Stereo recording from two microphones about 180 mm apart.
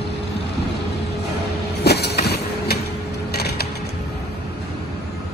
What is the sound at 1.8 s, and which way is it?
Vehicle, 65° left (ahead or behind).